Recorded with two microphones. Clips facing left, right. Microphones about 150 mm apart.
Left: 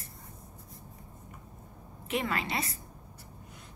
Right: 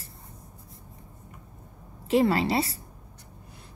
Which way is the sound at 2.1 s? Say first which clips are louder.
Right 10 dB; 30° right (ahead or behind).